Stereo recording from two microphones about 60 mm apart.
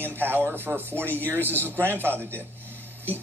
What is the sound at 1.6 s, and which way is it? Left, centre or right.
Speech, right.